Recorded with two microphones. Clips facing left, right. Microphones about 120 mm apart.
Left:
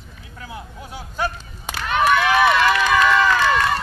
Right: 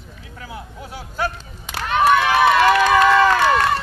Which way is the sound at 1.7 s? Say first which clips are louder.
Right 2 dB; 35° right (ahead or behind).